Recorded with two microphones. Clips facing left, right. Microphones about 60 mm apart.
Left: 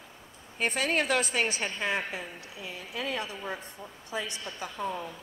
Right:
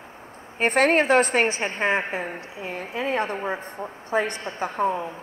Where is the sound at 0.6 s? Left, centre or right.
Right.